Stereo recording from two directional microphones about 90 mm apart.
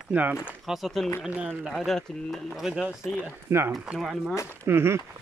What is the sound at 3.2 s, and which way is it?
Speech, 30° right (ahead or behind).